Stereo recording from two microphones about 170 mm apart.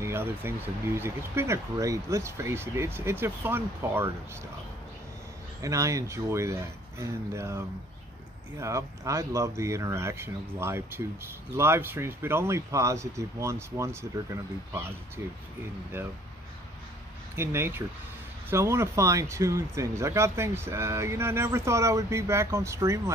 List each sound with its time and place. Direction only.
0.0 s speech: 15° right (ahead or behind)
5.6 s speech: 20° right (ahead or behind)
17.4 s speech: 15° right (ahead or behind)